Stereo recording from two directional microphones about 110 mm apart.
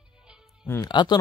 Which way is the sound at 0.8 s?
40° left (ahead or behind).